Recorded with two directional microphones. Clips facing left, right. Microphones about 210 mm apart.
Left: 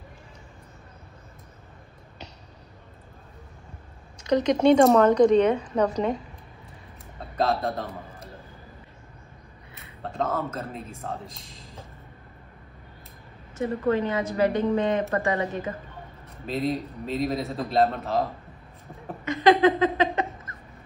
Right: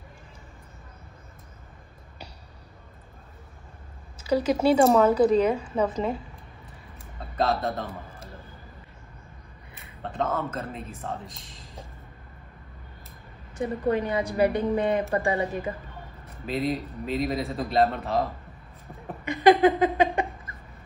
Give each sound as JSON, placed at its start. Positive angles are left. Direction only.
{"t": 4.2, "sound": "a woman's voice", "side_deg": -5}
{"t": 7.3, "sound": "a man's voice", "side_deg": 0}
{"t": 10.0, "sound": "speech", "side_deg": 0}
{"t": 13.6, "sound": "a woman's voice", "side_deg": -15}
{"t": 16.4, "sound": "speech", "side_deg": 0}
{"t": 19.2, "sound": "a sound", "side_deg": -15}